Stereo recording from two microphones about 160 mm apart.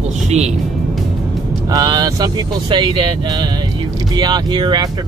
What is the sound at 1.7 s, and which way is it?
Speech, 25° right (ahead or behind).